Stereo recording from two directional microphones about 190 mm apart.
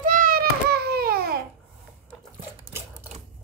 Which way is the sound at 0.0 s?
45° right (ahead or behind).